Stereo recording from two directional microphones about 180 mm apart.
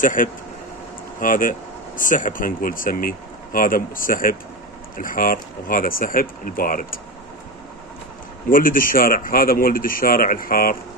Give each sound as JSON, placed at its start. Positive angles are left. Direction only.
{"t": 0.0, "sound": "speech", "side_deg": 50}
{"t": 8.5, "sound": "speech", "side_deg": 50}